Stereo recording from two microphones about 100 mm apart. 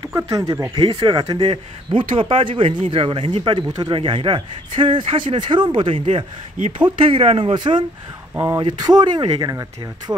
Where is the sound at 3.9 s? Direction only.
60° right (ahead or behind).